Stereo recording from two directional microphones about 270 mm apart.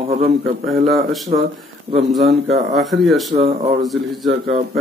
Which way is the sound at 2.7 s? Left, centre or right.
Centre.